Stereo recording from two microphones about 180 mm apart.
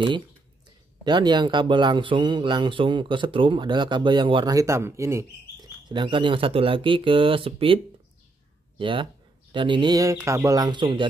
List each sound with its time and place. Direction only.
1.0 s speech: 25° right (ahead or behind)